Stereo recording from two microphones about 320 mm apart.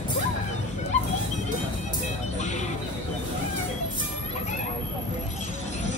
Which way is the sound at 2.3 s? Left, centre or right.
Left.